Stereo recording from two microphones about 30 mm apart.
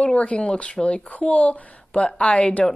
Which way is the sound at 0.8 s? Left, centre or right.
Left.